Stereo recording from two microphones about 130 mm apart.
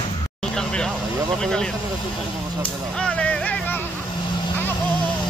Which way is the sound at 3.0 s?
10° left (ahead or behind).